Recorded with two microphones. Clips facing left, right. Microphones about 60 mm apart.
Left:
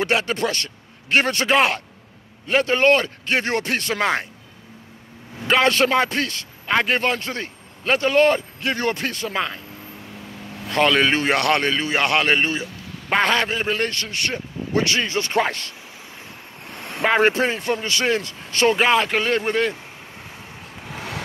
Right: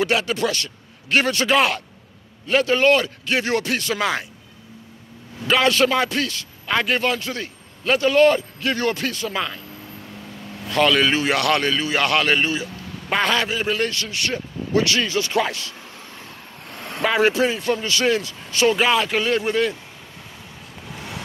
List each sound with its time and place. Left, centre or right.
0.0 s a man's voice: left
5.5 s a man's voice: left
10.7 s a man's voice: left
16.6 s vehicle: centre
17.0 s a man's voice: left
20.9 s vehicle: left